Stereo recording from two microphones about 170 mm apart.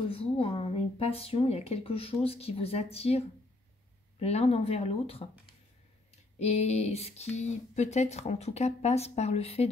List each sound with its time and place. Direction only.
0.1 s speech: 35° left (ahead or behind)
6.3 s speech: 40° left (ahead or behind)